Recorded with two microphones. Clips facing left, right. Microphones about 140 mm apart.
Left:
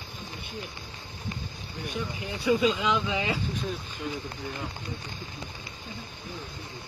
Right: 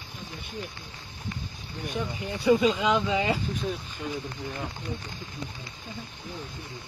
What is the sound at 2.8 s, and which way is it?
Speech, 45° right (ahead or behind).